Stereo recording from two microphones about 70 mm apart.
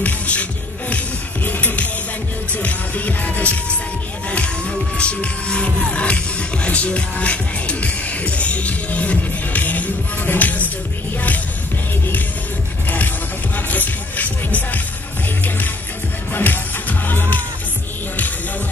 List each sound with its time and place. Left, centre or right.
0.0 s music: centre
4.3 s speech: centre
11.1 s music: left
13.6 s music: left